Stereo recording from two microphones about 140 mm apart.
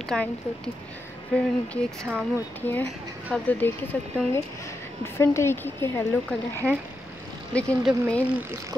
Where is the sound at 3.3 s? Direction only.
10° left (ahead or behind).